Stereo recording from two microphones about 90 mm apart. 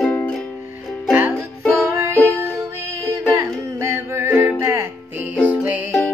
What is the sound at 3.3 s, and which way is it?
Music, 35° right (ahead or behind).